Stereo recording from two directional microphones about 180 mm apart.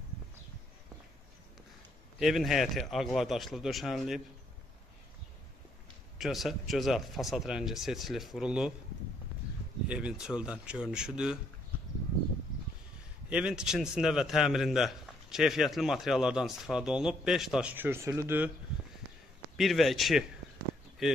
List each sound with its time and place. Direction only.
2.1 s a man's voice: centre (ahead or behind)
6.1 s a man's voice: centre (ahead or behind)
9.8 s a man's voice: 5° right (ahead or behind)
13.3 s a man's voice: 5° right (ahead or behind)
19.5 s a man's voice: centre (ahead or behind)